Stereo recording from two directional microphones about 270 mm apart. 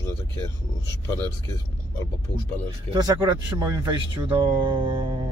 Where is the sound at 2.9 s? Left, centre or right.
Centre.